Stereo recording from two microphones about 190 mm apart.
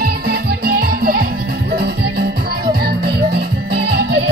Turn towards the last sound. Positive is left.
turn(degrees=-60)  # may be behind; listen again after turning